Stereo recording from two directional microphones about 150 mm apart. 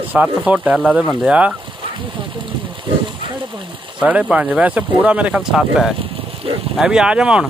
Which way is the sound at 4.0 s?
10° right (ahead or behind).